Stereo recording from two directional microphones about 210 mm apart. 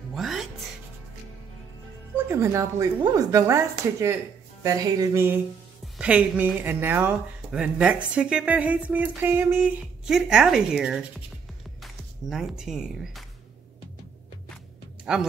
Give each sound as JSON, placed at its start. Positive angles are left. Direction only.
{"t": 0.1, "sound": "music", "side_deg": 0}
{"t": 2.2, "sound": "speech", "side_deg": -15}
{"t": 4.6, "sound": "speech", "side_deg": -15}
{"t": 15.1, "sound": "speech", "side_deg": -5}